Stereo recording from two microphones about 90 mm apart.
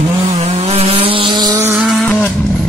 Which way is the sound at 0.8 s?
90° right.